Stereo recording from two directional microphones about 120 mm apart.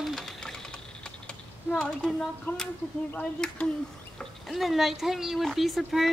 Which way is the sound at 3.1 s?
10° left (ahead or behind).